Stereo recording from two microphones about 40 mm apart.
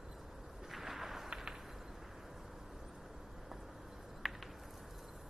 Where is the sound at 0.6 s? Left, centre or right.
Centre.